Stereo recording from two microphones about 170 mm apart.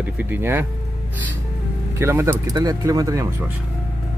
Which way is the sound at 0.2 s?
10° right (ahead or behind).